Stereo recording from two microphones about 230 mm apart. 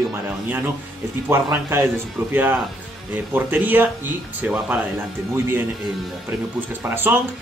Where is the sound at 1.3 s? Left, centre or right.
Centre.